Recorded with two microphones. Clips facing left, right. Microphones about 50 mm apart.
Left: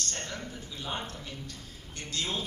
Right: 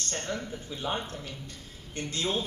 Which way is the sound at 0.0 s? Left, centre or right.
Right.